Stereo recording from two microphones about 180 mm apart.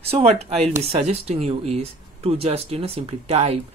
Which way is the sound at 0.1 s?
35° right (ahead or behind).